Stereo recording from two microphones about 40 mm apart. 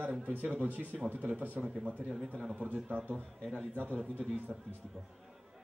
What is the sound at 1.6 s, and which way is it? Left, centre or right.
A man's voice, right.